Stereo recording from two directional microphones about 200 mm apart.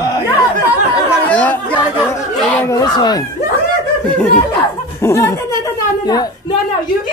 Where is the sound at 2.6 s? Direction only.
20° left (ahead or behind).